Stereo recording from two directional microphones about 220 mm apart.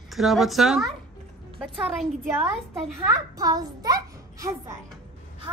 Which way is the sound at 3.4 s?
15° right (ahead or behind).